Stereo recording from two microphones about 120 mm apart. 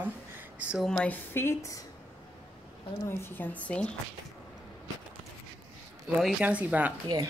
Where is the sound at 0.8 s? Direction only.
10° left (ahead or behind).